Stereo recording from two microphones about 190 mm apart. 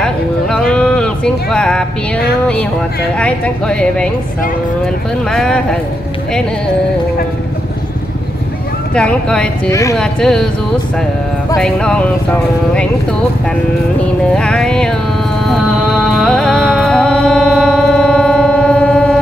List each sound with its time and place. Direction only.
0.0 s a sound: 5° left (ahead or behind)
3.2 s speech: 5° left (ahead or behind)
5.3 s speech: 5° left (ahead or behind)
8.9 s speech: 5° left (ahead or behind)
9.7 s speech: 15° left (ahead or behind)
9.9 s speech: 5° left (ahead or behind)
11.5 s speech: 5° left (ahead or behind)
14.3 s speech: 5° left (ahead or behind)
15.4 s music: centre (ahead or behind)